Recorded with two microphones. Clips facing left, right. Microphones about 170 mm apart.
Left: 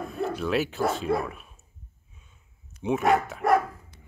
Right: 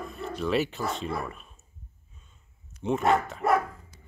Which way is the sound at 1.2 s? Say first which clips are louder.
Left 2 dB; 5° left (ahead or behind).